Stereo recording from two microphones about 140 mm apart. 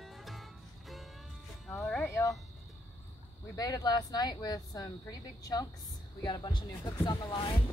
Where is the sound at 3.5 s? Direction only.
25° left (ahead or behind).